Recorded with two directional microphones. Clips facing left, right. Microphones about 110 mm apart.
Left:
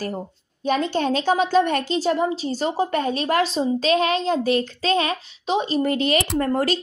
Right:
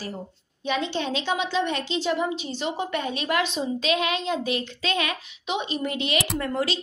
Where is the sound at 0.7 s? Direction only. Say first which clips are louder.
Left 6 dB; 45° left (ahead or behind).